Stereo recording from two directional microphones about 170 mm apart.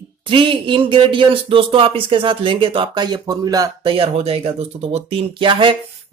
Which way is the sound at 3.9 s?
35° right (ahead or behind).